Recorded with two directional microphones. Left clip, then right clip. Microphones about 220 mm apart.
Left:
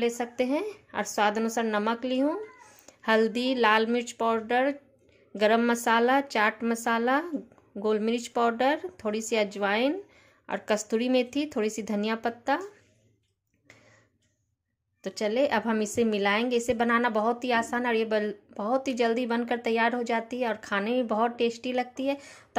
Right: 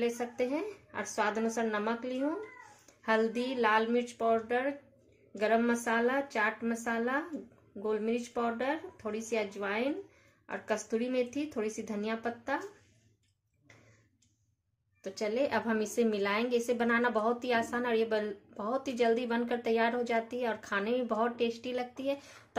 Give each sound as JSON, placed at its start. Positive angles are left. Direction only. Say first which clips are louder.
{"t": 0.0, "sound": "a woman's voice", "louder": "left 5 dB", "side_deg": 35}
{"t": 15.0, "sound": "a woman's voice", "louder": "left 6 dB", "side_deg": 35}